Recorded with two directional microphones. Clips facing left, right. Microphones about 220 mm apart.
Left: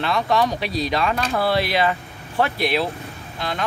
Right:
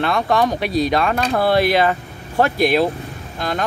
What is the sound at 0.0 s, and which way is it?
Speech, 50° right (ahead or behind).